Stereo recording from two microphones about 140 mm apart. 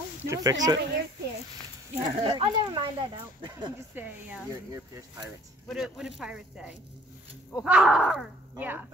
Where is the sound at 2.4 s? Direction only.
35° right (ahead or behind).